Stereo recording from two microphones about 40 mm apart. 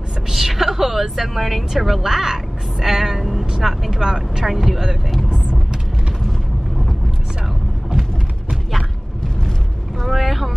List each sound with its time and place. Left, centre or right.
0.3 s a woman's voice: centre
5.3 s vehicle: centre
10.1 s speech: centre